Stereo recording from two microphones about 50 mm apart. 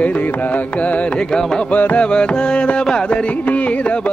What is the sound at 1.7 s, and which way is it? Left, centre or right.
Carnatic music, left.